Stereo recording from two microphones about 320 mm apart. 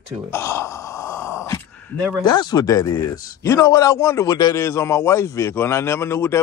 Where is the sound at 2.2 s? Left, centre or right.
Centre.